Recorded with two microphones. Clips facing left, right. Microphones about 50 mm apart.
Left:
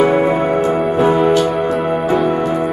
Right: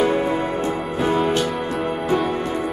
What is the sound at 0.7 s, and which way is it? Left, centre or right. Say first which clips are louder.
Music: left 8 dB; centre.